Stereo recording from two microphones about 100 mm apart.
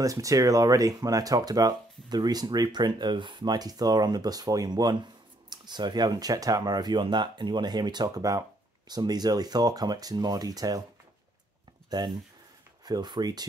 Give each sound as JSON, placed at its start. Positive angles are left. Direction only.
{"t": 0.0, "sound": "speech", "side_deg": -35}
{"t": 11.9, "sound": "speech", "side_deg": -45}